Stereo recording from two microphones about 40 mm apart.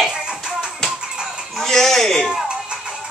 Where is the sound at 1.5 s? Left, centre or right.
Centre.